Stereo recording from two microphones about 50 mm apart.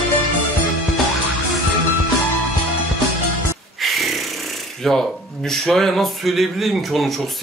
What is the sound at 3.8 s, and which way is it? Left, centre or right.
Speech, centre.